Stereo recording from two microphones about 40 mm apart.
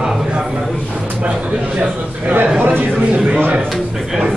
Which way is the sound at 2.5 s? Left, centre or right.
Right.